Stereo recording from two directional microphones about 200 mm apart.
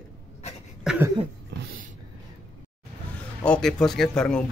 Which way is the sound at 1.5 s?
60° right (ahead or behind).